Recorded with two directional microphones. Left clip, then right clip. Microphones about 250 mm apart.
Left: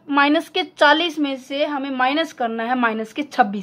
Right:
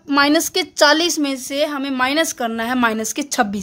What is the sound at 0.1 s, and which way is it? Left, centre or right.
A woman's voice, right.